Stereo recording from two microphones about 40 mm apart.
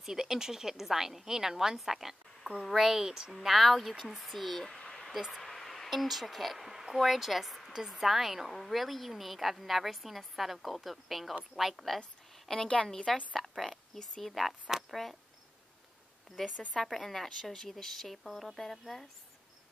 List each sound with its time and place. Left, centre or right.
0.0 s a woman's voice: centre
3.3 s a woman's voice: centre
4.7 s a sound: centre
5.3 s a woman's voice: centre
12.4 s a woman's voice: centre
13.4 s a woman's voice: centre
16.4 s a woman's voice: centre